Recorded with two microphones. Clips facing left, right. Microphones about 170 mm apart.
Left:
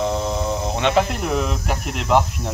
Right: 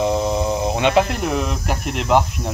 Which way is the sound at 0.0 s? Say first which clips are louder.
Right 3 dB; 5° right (ahead or behind).